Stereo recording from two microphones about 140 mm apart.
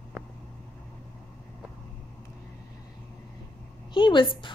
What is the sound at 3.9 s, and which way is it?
Speech, 35° left (ahead or behind).